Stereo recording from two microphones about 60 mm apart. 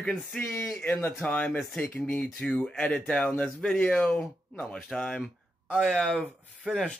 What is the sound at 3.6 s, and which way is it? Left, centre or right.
Speech, centre.